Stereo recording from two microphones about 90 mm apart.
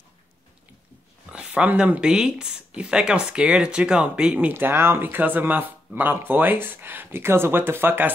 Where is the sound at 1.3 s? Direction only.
10° right (ahead or behind).